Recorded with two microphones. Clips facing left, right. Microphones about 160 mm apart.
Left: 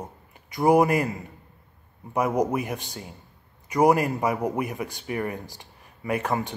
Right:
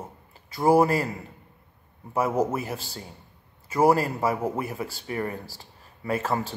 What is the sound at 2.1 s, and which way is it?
A man's voice, 15° left (ahead or behind).